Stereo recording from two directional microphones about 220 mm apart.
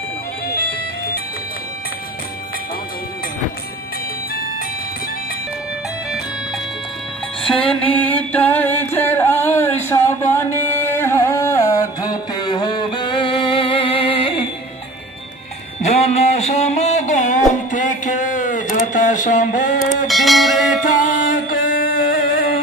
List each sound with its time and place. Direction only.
0.5 s music: 45° left (ahead or behind)
7.6 s music: 5° left (ahead or behind)
9.8 s carnatic music: 10° left (ahead or behind)
15.8 s a sound: 30° left (ahead or behind)
20.1 s bell: centre (ahead or behind)
21.3 s music: 40° left (ahead or behind)